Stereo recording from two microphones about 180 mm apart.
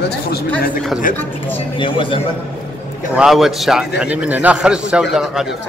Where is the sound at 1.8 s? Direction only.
30° left (ahead or behind).